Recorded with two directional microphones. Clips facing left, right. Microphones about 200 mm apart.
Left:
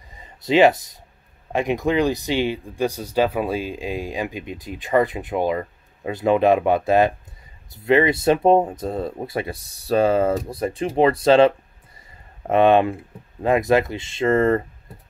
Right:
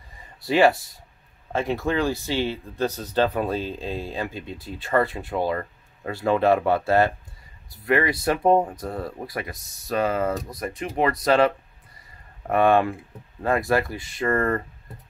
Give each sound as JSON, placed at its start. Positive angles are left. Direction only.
{"t": 0.2, "sound": "speech", "side_deg": 20}